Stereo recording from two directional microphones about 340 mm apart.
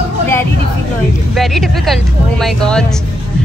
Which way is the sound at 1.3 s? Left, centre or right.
Centre.